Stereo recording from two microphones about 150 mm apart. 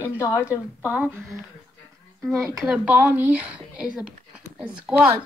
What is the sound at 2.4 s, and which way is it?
Speech, 10° right (ahead or behind).